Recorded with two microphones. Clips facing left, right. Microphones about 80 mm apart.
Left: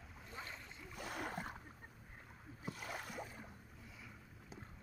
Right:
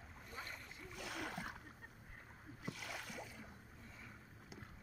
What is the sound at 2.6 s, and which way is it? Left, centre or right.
Boat, left.